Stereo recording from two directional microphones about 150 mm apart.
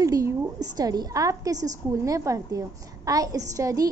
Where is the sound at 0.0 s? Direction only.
20° right (ahead or behind).